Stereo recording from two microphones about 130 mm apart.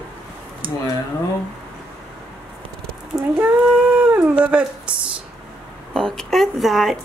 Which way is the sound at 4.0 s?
10° right (ahead or behind).